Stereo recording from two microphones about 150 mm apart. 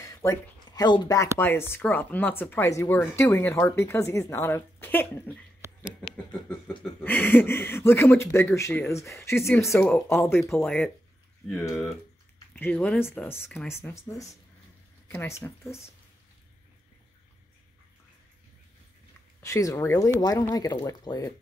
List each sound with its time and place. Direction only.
0.0 s speech: 20° left (ahead or behind)
7.0 s speech: 15° left (ahead or behind)
10.6 s speech: 5° left (ahead or behind)
19.4 s speech: 20° left (ahead or behind)